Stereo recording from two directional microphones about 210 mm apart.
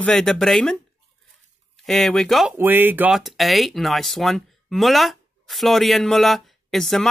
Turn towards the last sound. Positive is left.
turn(degrees=0)  # may be behind; listen again after turning